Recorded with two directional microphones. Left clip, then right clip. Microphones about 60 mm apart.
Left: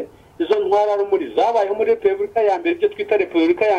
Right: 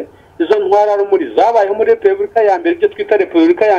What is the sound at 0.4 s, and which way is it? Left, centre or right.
A man's voice, right.